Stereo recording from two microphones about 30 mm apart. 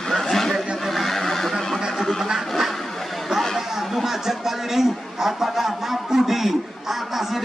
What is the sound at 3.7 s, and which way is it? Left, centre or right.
A man's voice, centre.